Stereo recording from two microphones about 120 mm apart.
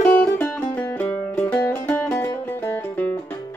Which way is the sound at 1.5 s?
15° left (ahead or behind).